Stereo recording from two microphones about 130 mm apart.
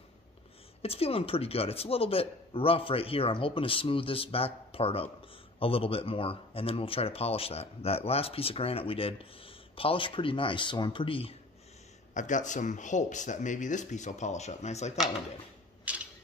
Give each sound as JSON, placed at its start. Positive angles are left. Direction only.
{"t": 0.8, "sound": "speech", "side_deg": 50}
{"t": 12.1, "sound": "speech", "side_deg": 70}
{"t": 15.9, "sound": "a sound", "side_deg": -10}